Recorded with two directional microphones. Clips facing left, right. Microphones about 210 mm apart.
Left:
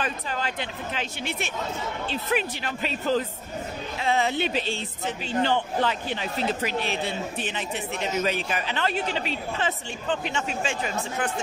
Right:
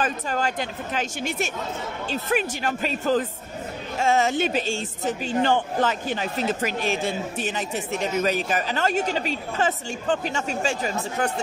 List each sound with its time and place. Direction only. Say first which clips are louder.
0.0 s speech: right 4 dB; 45° right (ahead or behind)